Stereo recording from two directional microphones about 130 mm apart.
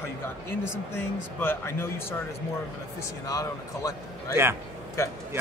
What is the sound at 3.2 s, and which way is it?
Speech, 25° left (ahead or behind).